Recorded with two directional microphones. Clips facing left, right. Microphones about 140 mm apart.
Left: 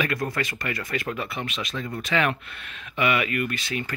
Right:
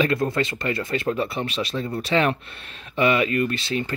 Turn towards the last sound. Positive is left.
turn(degrees=-30)  # may be behind; listen again after turning